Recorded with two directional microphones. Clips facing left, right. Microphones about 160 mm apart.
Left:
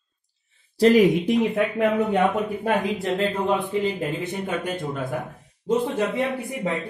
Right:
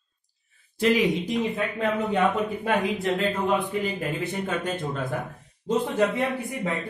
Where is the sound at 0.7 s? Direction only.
35° left (ahead or behind).